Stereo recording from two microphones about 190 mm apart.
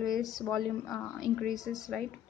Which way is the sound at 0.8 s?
15° left (ahead or behind).